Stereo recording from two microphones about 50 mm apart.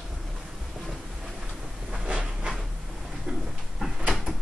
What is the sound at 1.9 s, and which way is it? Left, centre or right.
Train, centre.